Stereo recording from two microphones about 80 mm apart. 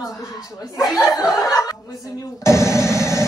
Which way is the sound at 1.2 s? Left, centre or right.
Left.